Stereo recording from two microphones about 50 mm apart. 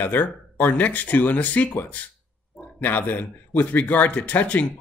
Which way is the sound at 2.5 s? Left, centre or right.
Left.